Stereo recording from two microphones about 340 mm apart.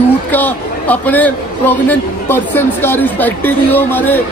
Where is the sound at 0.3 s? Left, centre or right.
Centre.